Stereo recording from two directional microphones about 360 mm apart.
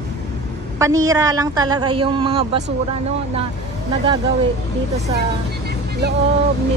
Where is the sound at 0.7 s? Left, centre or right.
Centre.